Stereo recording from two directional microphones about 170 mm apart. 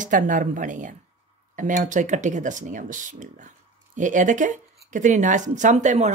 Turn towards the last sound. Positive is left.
turn(degrees=-45)  # may be behind; listen again after turning